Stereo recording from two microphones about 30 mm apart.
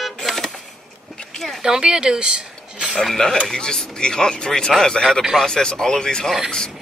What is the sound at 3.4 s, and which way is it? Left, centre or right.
Speech, left.